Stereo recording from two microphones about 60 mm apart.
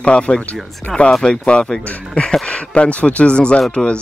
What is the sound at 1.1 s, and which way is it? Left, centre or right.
Speech, centre.